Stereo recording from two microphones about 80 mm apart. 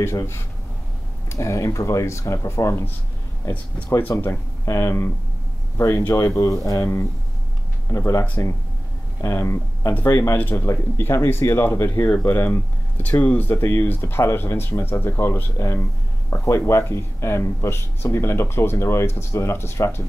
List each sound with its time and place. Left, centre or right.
0.0 s speech: left
4.2 s speech: left
6.6 s speech: left
7.9 s speech: left
13.6 s speech: left